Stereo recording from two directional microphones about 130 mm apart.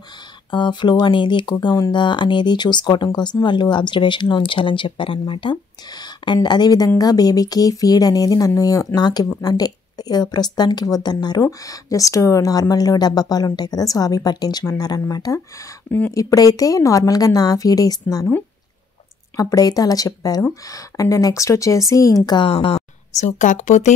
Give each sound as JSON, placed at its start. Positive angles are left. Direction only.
{"t": 0.5, "sound": "a woman's voice", "side_deg": 35}
{"t": 19.3, "sound": "a woman's voice", "side_deg": 25}
{"t": 22.5, "sound": "speech", "side_deg": 45}